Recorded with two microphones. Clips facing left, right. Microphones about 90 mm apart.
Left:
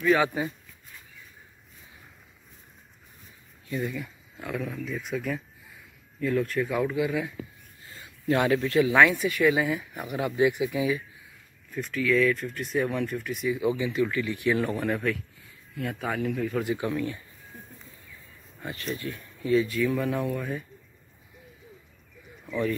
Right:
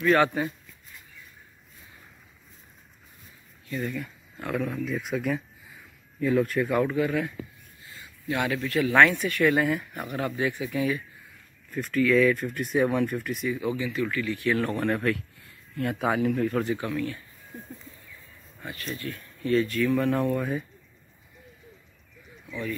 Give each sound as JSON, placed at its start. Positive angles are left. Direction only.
{"t": 0.0, "sound": "speech", "side_deg": 5}
{"t": 3.7, "sound": "speech", "side_deg": 5}
{"t": 7.0, "sound": "speech", "side_deg": 10}
{"t": 7.8, "sound": "a sound", "side_deg": 35}
{"t": 8.9, "sound": "speech", "side_deg": 5}
{"t": 13.5, "sound": "speech", "side_deg": 15}
{"t": 14.8, "sound": "speech", "side_deg": 0}
{"t": 16.6, "sound": "speech", "side_deg": 15}
{"t": 18.6, "sound": "speech", "side_deg": 25}
{"t": 19.5, "sound": "speech", "side_deg": 5}
{"t": 22.5, "sound": "speech", "side_deg": 40}